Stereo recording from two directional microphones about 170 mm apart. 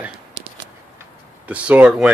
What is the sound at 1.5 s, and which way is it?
Speech, 10° right (ahead or behind).